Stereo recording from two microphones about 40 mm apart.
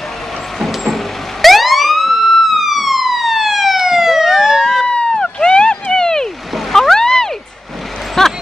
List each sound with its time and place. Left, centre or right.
0.6 s vehicle: centre
0.9 s emergency vehicle: centre
4.8 s police car: left
6.5 s a sound: centre